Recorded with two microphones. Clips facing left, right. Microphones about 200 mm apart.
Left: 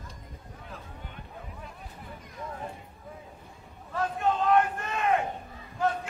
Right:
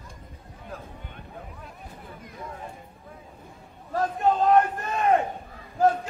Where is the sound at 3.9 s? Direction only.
40° right (ahead or behind).